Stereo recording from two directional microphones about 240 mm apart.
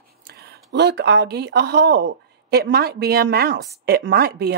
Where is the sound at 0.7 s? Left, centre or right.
Right.